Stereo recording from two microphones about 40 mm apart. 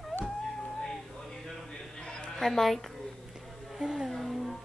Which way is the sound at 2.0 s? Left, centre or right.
Centre.